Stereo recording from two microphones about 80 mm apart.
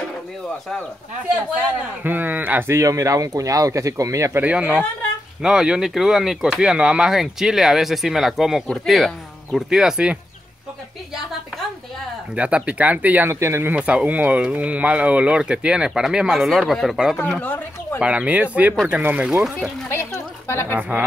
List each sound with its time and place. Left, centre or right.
2.0 s speech: right
2.8 s speech: right
4.4 s speech: centre
12.4 s speech: centre
13.3 s speech: right
13.7 s speech: centre
17.4 s speech: left
18.0 s speech: centre
19.3 s speech: centre
19.9 s a sound: left